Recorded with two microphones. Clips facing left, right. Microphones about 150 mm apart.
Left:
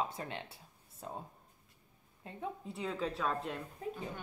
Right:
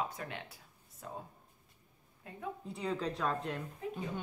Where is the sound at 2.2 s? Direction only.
30° left (ahead or behind).